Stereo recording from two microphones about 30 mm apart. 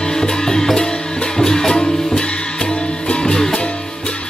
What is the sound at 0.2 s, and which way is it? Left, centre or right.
Music, centre.